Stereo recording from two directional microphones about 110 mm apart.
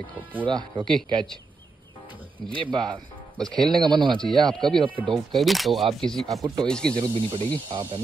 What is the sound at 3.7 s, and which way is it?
Speech, 45° right (ahead or behind).